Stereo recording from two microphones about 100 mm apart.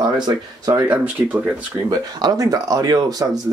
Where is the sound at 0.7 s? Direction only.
15° right (ahead or behind).